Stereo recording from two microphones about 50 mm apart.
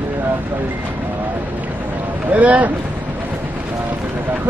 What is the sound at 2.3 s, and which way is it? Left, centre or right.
Speech, right.